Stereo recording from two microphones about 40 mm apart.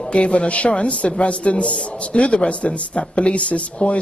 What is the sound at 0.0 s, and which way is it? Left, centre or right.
A man's voice, left.